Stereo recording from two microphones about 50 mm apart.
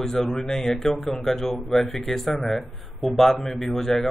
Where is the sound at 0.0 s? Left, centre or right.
Centre.